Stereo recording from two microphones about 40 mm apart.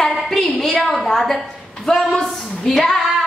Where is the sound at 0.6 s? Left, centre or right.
Centre.